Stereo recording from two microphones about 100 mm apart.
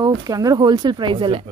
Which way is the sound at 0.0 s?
40° right (ahead or behind).